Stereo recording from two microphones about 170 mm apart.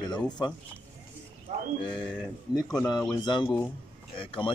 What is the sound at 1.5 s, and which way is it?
Speech, 40° right (ahead or behind).